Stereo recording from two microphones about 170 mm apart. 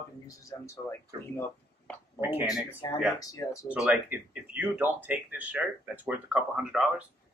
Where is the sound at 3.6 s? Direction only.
5° right (ahead or behind).